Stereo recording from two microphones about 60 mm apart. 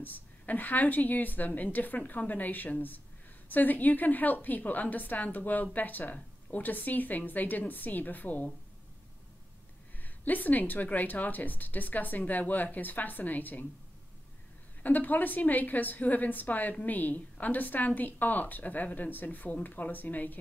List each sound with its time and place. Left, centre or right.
0.0 s a woman's voice: left
10.0 s a woman's voice: left
14.8 s a woman's voice: left